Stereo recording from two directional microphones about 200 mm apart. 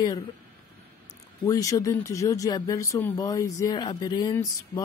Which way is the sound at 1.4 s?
15° left (ahead or behind).